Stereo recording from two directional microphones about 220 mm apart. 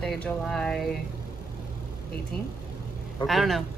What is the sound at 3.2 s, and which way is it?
Speech, centre (ahead or behind).